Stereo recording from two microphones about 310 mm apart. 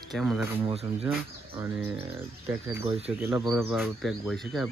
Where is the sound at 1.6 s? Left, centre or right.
Centre.